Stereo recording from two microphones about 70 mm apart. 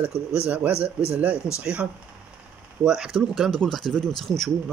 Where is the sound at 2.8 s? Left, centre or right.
Centre.